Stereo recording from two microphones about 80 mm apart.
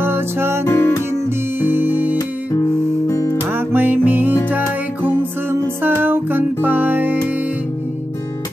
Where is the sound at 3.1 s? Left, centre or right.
Left.